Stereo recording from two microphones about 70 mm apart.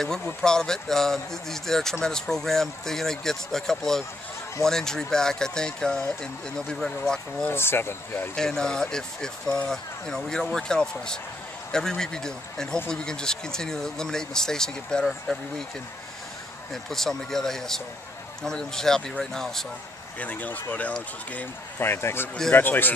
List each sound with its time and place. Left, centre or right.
0.0 s speech: centre
7.4 s speech: left
8.4 s speech: centre
16.7 s speech: centre
20.2 s a man's voice: left
21.7 s a man's voice: left